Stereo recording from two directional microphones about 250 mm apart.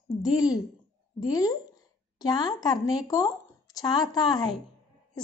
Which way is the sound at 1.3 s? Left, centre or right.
Centre.